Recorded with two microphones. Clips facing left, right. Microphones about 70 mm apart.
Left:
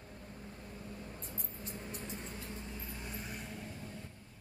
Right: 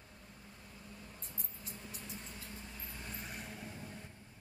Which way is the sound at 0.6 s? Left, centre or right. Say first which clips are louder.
Left 5 dB; left.